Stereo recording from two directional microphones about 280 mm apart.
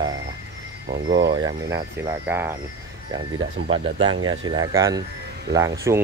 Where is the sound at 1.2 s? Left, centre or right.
Centre.